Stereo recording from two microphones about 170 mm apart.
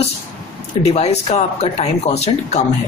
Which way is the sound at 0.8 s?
40° left (ahead or behind).